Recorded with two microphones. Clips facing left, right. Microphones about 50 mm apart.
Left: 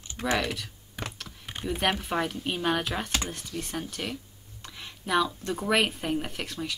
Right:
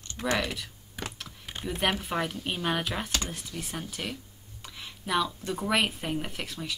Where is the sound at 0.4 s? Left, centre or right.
Centre.